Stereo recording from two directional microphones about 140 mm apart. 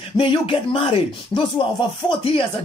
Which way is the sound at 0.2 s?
40° left (ahead or behind).